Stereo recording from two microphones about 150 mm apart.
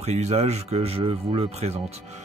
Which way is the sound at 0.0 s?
50° right (ahead or behind).